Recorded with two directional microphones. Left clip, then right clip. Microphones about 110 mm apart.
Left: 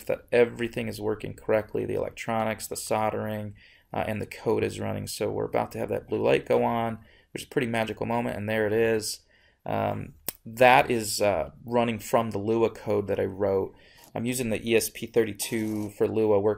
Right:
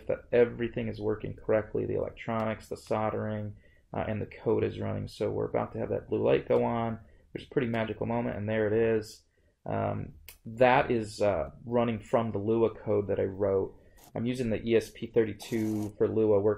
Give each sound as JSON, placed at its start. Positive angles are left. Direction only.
{"t": 0.0, "sound": "speech", "side_deg": 25}
{"t": 16.0, "sound": "speech", "side_deg": 25}